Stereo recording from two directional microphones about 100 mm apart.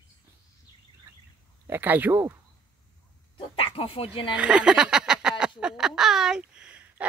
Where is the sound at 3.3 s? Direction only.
65° left (ahead or behind).